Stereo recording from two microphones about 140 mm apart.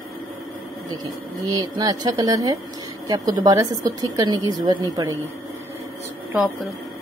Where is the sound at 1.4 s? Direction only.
30° right (ahead or behind).